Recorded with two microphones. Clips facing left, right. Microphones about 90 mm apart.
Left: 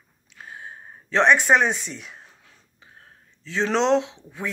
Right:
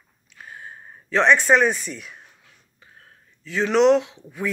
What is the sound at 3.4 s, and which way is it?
A man's voice, 25° left (ahead or behind).